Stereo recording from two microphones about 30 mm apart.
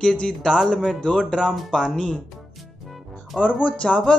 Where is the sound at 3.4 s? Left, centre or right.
Left.